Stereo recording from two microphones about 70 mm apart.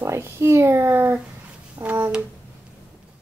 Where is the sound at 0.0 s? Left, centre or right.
Right.